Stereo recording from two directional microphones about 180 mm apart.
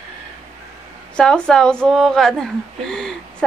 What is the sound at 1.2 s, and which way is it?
A woman's voice, 5° left (ahead or behind).